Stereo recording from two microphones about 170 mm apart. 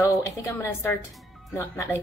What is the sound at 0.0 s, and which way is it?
A woman's voice, 20° left (ahead or behind).